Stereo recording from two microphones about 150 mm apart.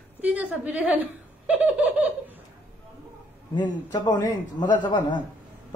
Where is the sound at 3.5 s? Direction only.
30° left (ahead or behind).